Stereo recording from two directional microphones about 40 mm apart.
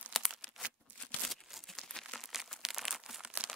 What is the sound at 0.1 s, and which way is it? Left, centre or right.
Crumpling, centre.